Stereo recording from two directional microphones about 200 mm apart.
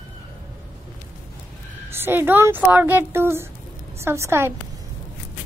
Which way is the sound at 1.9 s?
10° right (ahead or behind).